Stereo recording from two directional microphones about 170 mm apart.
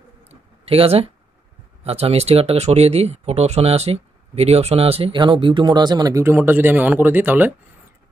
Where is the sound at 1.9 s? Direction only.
35° right (ahead or behind).